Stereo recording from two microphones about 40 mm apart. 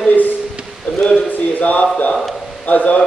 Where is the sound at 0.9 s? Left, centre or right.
Left.